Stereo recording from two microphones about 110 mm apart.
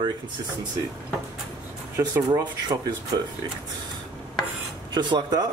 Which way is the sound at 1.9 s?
30° right (ahead or behind).